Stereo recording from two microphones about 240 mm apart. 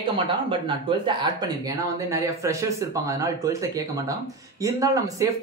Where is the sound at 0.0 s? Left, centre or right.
Right.